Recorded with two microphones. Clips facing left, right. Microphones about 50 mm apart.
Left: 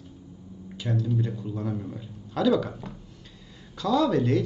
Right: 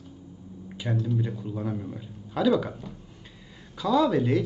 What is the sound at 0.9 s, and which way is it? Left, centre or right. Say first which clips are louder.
Speech: left 1 dB; centre.